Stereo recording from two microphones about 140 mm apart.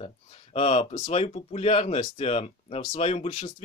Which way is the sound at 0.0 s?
50° left (ahead or behind).